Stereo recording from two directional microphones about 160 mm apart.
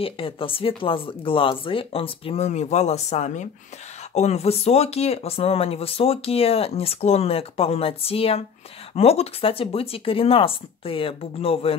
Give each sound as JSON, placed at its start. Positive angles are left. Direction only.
{"t": 0.0, "sound": "speech", "side_deg": 35}